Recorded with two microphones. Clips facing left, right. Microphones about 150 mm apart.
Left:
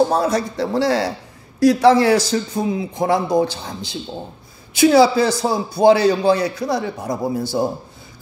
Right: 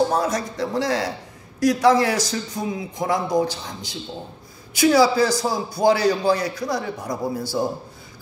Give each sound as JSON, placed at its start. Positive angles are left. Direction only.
{"t": 0.1, "sound": "a man's voice", "side_deg": 30}